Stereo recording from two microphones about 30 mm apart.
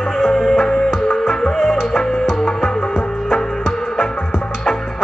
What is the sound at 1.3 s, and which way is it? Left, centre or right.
Music, centre.